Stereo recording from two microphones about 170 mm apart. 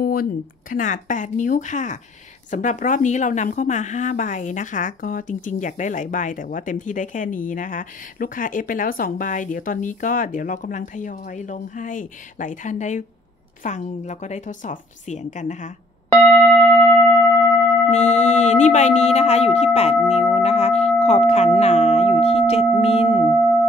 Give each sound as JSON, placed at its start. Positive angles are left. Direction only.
{"t": 0.0, "sound": "a woman's voice", "side_deg": 60}
{"t": 16.1, "sound": "music", "side_deg": 5}
{"t": 17.8, "sound": "speech", "side_deg": 45}